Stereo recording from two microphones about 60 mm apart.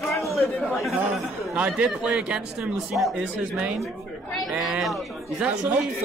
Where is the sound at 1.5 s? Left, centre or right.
Centre.